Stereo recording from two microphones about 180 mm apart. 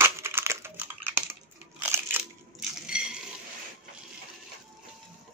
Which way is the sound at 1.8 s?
10° right (ahead or behind).